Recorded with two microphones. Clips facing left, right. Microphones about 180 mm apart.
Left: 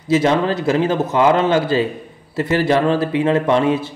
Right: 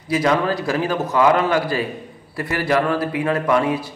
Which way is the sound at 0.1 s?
25° left (ahead or behind).